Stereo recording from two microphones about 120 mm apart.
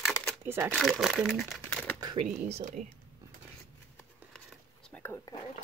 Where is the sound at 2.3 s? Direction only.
75° right (ahead or behind).